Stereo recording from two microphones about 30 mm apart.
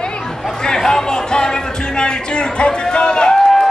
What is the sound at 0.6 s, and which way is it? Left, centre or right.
Music, left.